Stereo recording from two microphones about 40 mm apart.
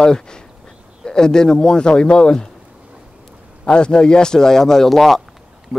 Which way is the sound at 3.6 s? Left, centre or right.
Left.